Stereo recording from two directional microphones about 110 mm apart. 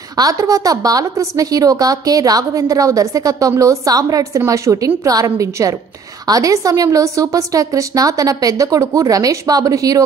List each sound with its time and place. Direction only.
0.2 s a woman's voice: 30° right (ahead or behind)